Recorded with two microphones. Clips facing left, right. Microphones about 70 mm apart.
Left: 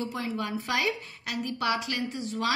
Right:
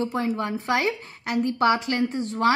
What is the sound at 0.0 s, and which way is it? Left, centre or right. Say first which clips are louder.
A woman's voice: right 6 dB; right.